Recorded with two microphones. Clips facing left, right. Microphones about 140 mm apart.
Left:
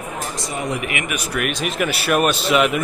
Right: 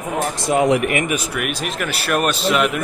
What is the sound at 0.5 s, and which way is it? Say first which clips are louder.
Speech: right 10 dB; 90° right.